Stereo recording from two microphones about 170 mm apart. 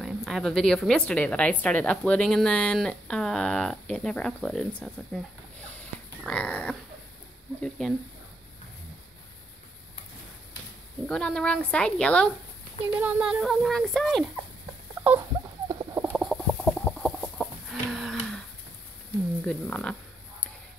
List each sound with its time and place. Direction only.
0.0 s a woman's voice: centre (ahead or behind)
6.2 s dog: 5° left (ahead or behind)
7.8 s a woman's voice: 5° left (ahead or behind)
11.1 s a woman's voice: 5° left (ahead or behind)
12.9 s a woman's voice: 5° right (ahead or behind)
15.7 s chicken: 20° right (ahead or behind)
16.0 s chicken: 5° right (ahead or behind)
19.4 s a sound: 5° left (ahead or behind)